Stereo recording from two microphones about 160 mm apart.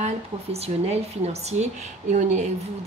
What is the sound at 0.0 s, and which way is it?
A woman's voice, 40° right (ahead or behind).